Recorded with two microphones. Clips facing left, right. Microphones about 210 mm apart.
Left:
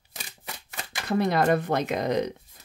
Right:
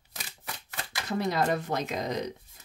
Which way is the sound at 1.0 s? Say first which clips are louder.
Left 5 dB; 60° left (ahead or behind).